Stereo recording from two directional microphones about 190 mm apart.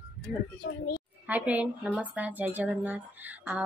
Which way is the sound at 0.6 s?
75° left (ahead or behind).